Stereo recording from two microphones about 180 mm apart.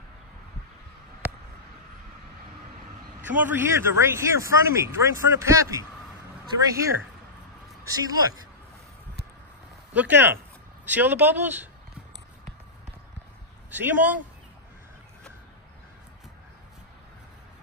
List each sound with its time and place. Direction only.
3.3 s speech: 10° right (ahead or behind)
9.9 s speech: 10° right (ahead or behind)
13.7 s speech: 10° right (ahead or behind)